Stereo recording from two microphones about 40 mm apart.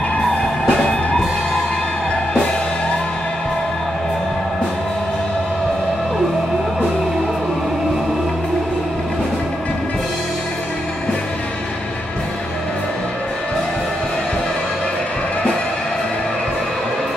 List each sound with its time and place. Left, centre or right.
0.2 s music: centre